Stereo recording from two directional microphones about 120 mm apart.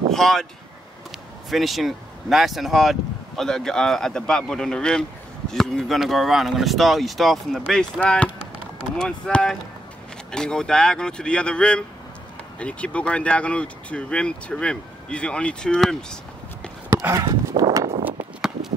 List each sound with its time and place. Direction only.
0.1 s speech: 5° left (ahead or behind)
1.5 s speech: centre (ahead or behind)
16.9 s horse: 25° right (ahead or behind)